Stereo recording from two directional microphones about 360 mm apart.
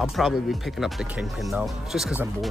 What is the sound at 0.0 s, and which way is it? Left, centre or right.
Speech, centre.